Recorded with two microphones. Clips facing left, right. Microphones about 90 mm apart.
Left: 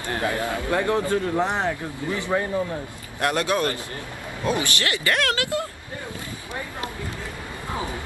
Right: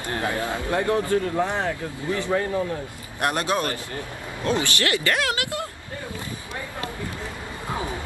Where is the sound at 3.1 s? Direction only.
20° right (ahead or behind).